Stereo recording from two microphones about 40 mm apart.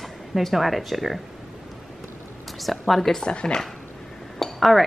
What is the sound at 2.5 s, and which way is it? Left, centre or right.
Speech, centre.